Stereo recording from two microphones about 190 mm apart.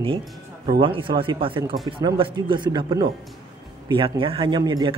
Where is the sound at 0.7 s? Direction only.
25° right (ahead or behind).